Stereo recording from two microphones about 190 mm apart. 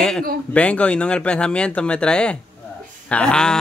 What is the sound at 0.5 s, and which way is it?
Speech, 5° left (ahead or behind).